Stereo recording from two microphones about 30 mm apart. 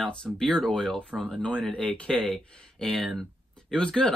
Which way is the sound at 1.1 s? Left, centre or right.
Right.